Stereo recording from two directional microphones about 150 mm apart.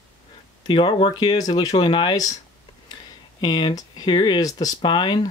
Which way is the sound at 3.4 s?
30° left (ahead or behind).